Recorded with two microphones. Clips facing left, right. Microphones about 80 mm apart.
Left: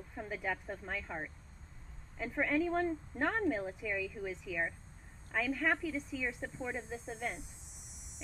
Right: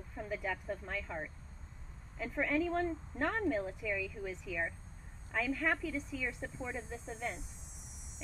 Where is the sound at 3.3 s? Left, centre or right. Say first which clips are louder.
Left 1 dB; left.